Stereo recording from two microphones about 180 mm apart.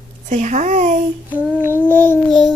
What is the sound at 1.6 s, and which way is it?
Child singing, 10° left (ahead or behind).